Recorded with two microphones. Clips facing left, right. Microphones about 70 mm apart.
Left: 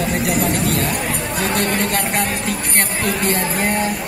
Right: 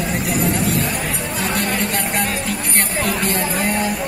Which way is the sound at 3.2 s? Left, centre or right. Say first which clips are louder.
Left 1 dB; left.